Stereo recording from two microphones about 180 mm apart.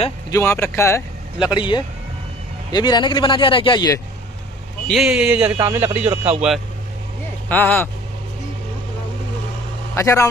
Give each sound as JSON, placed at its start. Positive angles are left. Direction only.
{"t": 0.3, "sound": "speech", "side_deg": 15}
{"t": 1.5, "sound": "speech", "side_deg": 25}
{"t": 4.8, "sound": "speech", "side_deg": 0}
{"t": 7.4, "sound": "speech", "side_deg": 10}
{"t": 9.9, "sound": "speech", "side_deg": 15}